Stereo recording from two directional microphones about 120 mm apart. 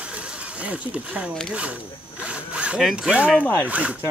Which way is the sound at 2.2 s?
10° right (ahead or behind).